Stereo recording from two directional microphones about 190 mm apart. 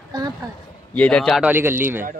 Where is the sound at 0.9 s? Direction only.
5° left (ahead or behind).